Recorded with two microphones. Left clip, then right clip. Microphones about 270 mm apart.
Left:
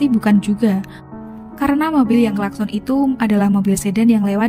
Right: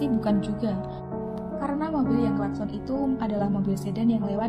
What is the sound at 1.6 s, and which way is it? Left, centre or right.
A woman's voice, left.